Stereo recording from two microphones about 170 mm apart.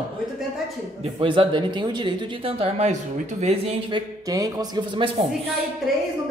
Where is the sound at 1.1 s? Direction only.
30° right (ahead or behind).